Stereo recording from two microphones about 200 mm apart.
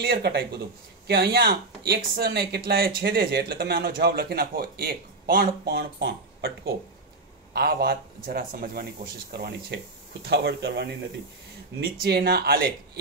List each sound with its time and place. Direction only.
0.0 s speech: 50° right (ahead or behind)